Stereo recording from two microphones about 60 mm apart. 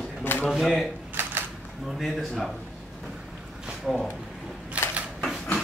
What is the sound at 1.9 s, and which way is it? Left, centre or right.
Speech, centre.